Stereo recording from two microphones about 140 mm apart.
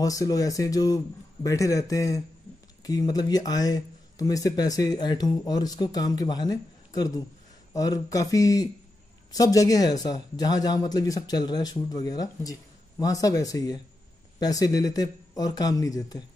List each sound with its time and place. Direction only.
0.0 s speech: 25° left (ahead or behind)